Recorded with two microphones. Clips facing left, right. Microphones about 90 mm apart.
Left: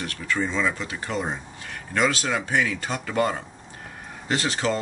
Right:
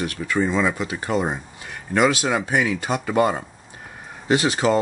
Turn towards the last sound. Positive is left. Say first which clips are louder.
# right 6 dB
turn(degrees=-15)  # may be behind; listen again after turning